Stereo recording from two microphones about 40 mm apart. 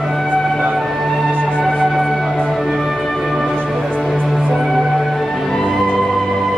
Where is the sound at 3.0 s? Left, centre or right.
Centre.